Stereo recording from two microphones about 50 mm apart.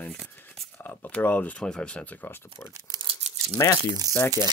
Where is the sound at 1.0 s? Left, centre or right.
Left.